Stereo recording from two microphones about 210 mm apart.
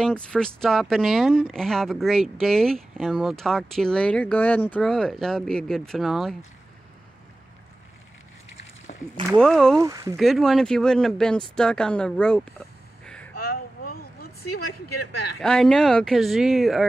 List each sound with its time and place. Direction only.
0.0 s speech: 5° left (ahead or behind)
9.3 s speech: centre (ahead or behind)
9.8 s speech: 15° right (ahead or behind)
10.1 s speech: centre (ahead or behind)
13.5 s vehicle: 45° left (ahead or behind)
15.4 s speech: 5° left (ahead or behind)